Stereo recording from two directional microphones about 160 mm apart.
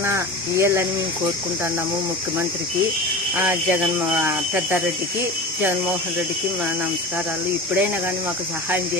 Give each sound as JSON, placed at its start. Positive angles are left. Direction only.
{"t": 0.0, "sound": "speech", "side_deg": -15}
{"t": 3.3, "sound": "speech", "side_deg": -15}